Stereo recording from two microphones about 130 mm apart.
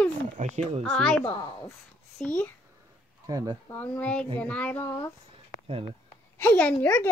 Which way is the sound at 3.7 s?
10° left (ahead or behind).